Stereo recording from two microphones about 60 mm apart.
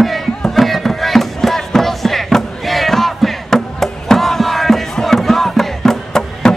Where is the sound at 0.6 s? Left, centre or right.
Centre.